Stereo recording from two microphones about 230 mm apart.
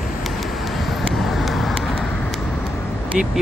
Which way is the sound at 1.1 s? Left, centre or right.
Centre.